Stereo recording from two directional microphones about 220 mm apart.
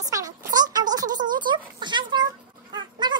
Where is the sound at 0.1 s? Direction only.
15° right (ahead or behind).